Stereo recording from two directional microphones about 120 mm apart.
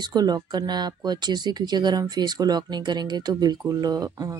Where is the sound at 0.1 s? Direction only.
35° right (ahead or behind).